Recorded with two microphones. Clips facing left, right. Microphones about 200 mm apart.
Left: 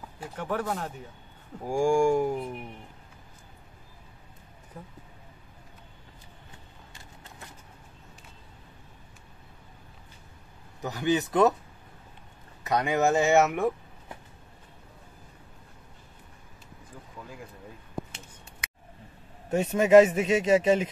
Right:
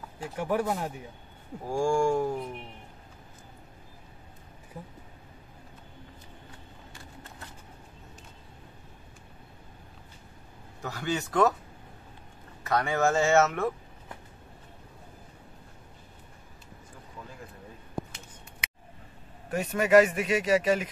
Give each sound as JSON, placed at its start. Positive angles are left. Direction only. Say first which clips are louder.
{"t": 0.4, "sound": "speech", "louder": "right 2 dB", "side_deg": -10}
{"t": 1.7, "sound": "speech", "louder": "left 3 dB", "side_deg": 15}
{"t": 10.8, "sound": "speech", "louder": "left 5 dB", "side_deg": 20}
{"t": 12.6, "sound": "speech", "louder": "left 1 dB", "side_deg": 15}
{"t": 19.5, "sound": "speech", "louder": "left 3 dB", "side_deg": 25}